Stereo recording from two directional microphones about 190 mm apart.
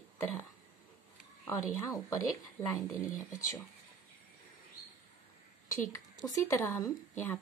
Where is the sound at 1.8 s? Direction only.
15° left (ahead or behind).